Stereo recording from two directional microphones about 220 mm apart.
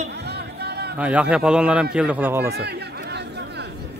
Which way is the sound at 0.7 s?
50° right (ahead or behind).